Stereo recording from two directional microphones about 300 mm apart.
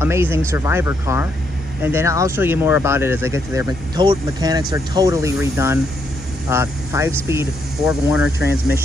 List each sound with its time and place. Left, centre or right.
0.0 s speech: centre